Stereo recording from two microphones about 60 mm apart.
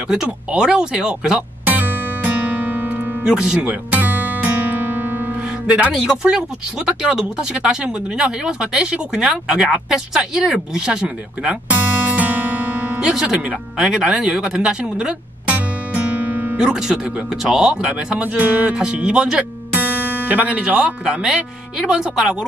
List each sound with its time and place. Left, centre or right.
0.1 s speech: centre
1.7 s music: right
3.3 s speech: centre
3.9 s guitar: right
7.0 s speech: centre
11.7 s music: right
13.0 s speech: centre
15.5 s music: right
16.5 s speech: centre
18.4 s music: right
18.7 s speech: centre
19.3 s speech: right; by 22.4 s centre